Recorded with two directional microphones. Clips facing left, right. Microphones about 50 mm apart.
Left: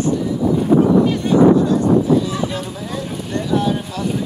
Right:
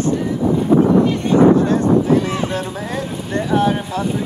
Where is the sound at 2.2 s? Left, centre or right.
Right.